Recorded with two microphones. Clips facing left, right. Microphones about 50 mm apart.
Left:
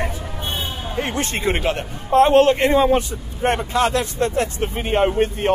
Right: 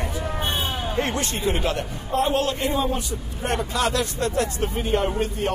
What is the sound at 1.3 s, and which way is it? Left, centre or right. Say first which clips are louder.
A man's voice: left 3 dB; left.